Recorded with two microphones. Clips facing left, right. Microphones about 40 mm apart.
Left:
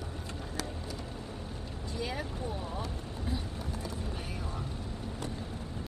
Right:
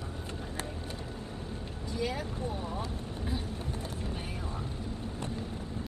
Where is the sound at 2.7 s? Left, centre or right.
Right.